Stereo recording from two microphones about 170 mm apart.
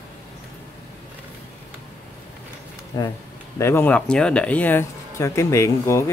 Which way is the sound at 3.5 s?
15° left (ahead or behind).